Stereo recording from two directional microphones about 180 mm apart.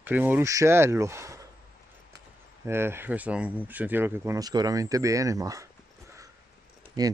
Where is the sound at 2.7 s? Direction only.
15° right (ahead or behind).